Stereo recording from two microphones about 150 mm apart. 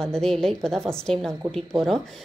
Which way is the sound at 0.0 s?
5° left (ahead or behind).